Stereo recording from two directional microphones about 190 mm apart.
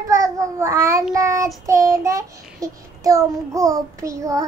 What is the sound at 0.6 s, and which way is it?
Child singing, 15° right (ahead or behind).